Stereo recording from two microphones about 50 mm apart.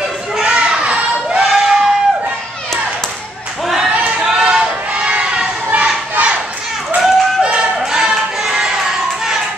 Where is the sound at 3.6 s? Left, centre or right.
Centre; by 5.5 s right.